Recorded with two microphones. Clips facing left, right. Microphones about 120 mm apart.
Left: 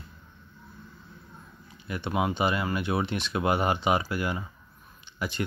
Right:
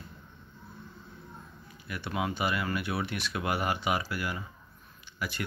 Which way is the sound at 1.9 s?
25° left (ahead or behind).